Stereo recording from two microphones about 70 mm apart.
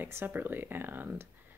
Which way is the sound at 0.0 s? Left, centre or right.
Right.